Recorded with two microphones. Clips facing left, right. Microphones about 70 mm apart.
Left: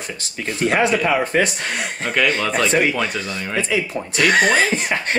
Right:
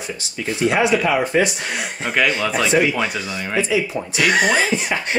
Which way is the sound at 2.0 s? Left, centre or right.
Centre.